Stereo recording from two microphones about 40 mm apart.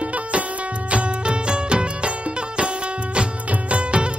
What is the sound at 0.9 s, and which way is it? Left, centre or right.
Music, right.